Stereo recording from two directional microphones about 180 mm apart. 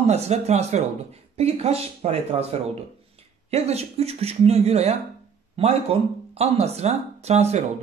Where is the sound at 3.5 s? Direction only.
35° right (ahead or behind).